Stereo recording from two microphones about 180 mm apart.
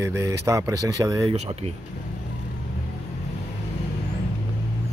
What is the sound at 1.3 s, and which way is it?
Speech, 35° right (ahead or behind).